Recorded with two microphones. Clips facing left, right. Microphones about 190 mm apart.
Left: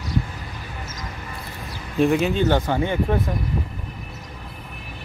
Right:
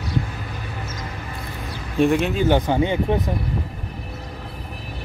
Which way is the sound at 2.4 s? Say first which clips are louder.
Right 2 dB; 15° right (ahead or behind).